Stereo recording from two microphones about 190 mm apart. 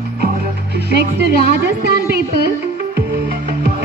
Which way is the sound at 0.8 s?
60° right (ahead or behind).